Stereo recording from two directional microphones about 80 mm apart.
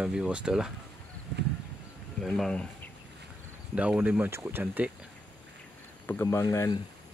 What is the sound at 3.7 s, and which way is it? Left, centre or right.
Speech, centre.